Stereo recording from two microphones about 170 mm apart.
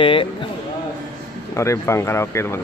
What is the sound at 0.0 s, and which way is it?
Speech, 30° left (ahead or behind).